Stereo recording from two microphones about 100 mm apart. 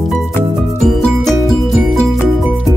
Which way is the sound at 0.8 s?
Centre (ahead or behind).